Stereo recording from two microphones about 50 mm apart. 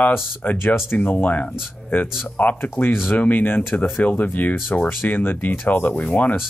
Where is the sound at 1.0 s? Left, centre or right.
Left.